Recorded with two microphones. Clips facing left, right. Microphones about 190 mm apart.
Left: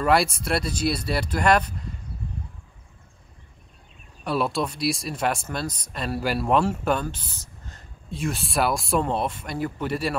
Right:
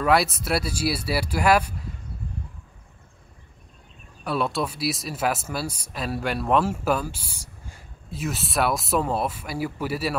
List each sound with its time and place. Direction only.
0.0 s speech: centre (ahead or behind)
4.2 s speech: centre (ahead or behind)